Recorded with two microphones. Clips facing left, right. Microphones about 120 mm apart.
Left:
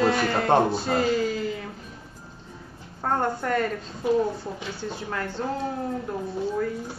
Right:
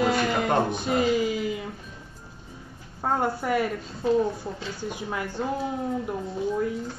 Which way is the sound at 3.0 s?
10° right (ahead or behind).